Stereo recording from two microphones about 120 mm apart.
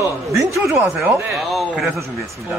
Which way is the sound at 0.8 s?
20° right (ahead or behind).